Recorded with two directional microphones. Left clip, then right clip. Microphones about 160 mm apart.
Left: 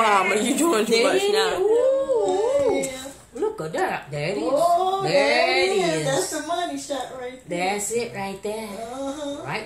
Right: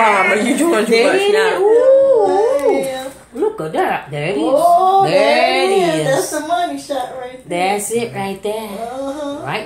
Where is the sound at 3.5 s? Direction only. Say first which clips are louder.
Right 8 dB; 10° right (ahead or behind).